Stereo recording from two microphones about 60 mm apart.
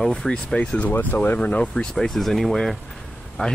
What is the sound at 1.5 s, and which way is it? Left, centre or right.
Speech, centre.